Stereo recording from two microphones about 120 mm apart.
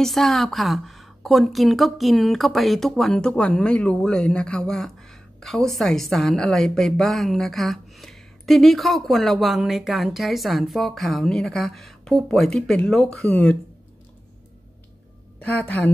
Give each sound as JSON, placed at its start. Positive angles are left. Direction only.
{"t": 0.0, "sound": "a woman's voice", "side_deg": 0}
{"t": 15.3, "sound": "a woman's voice", "side_deg": 10}